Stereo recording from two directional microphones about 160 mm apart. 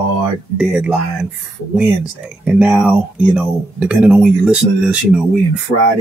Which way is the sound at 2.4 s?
5° right (ahead or behind).